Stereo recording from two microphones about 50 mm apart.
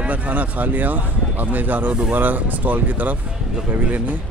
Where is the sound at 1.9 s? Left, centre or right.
Right.